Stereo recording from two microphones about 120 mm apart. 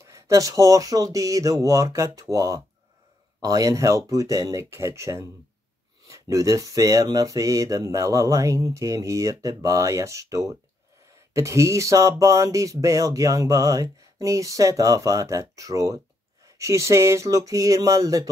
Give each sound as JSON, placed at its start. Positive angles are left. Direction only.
{"t": 0.0, "sound": "speech", "side_deg": -25}